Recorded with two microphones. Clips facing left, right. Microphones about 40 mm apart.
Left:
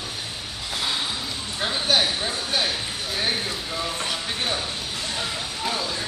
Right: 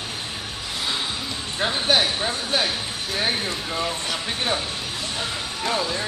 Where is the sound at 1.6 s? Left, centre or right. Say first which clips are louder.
Right 2 dB; centre.